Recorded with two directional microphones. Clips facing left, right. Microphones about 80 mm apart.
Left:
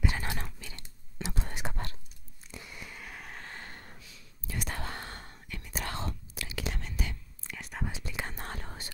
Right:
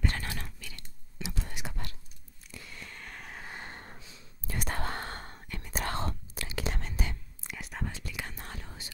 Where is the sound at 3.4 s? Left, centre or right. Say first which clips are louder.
Right 2 dB; centre.